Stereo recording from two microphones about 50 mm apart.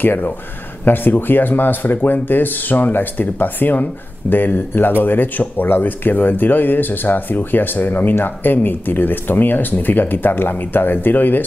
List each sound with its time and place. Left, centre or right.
0.0 s speech: left